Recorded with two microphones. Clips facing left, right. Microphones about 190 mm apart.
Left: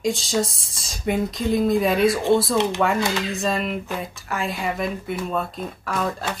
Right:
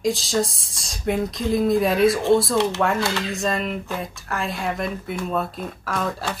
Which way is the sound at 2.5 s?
15° left (ahead or behind).